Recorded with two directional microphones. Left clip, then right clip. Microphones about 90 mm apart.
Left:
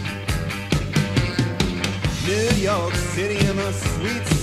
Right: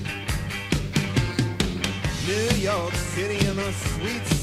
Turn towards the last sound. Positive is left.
turn(degrees=25)  # may be behind; listen again after turning